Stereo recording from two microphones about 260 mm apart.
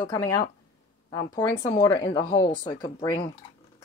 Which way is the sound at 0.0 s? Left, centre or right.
Centre.